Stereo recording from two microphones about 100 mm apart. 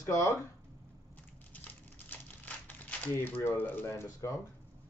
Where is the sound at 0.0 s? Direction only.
35° left (ahead or behind).